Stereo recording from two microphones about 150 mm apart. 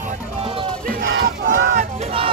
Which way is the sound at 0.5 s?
35° right (ahead or behind).